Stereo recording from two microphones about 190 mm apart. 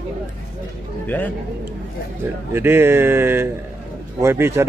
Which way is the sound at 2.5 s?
10° right (ahead or behind).